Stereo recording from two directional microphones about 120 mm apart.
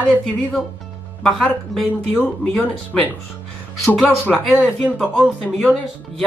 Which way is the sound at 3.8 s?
15° left (ahead or behind).